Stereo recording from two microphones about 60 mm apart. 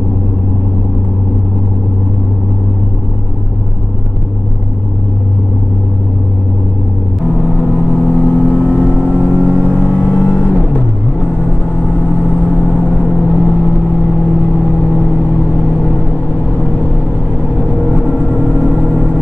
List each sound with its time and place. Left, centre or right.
7.4 s vehicle: left
11.9 s vehicle: left
17.4 s vehicle: left